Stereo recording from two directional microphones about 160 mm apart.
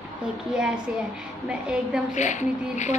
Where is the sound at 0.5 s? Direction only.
5° right (ahead or behind).